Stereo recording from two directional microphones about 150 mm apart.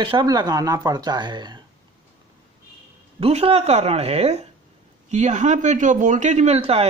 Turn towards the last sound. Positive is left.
turn(degrees=-45)  # may be behind; listen again after turning